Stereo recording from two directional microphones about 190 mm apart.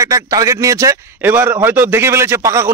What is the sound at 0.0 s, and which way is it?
Speech, 15° right (ahead or behind).